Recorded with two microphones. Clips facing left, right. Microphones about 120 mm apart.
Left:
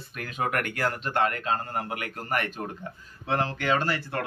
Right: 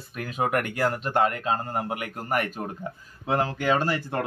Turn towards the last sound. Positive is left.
turn(degrees=-15)  # may be behind; listen again after turning